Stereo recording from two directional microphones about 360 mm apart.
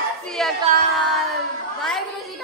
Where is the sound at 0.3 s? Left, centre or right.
Centre.